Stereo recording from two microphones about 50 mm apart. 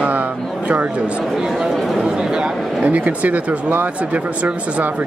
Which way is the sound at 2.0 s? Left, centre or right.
Centre.